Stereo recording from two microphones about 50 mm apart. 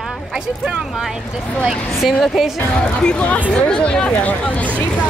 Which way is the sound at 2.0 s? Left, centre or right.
Centre.